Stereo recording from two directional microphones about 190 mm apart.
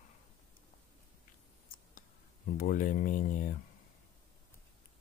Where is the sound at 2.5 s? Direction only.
45° left (ahead or behind).